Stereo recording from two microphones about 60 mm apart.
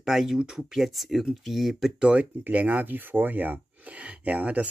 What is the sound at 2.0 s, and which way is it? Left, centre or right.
Speech, centre.